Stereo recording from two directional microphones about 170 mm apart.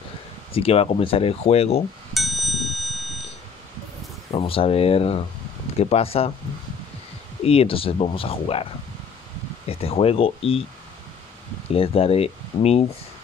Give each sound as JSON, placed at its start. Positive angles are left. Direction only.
{"t": 0.5, "sound": "speech", "side_deg": 35}
{"t": 2.1, "sound": "bicycle bell", "side_deg": 0}
{"t": 4.3, "sound": "speech", "side_deg": 35}
{"t": 7.4, "sound": "speech", "side_deg": 35}
{"t": 9.7, "sound": "speech", "side_deg": 35}
{"t": 11.7, "sound": "speech", "side_deg": 35}